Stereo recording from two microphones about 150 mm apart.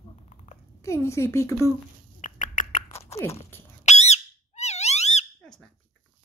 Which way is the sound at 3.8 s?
50° left (ahead or behind).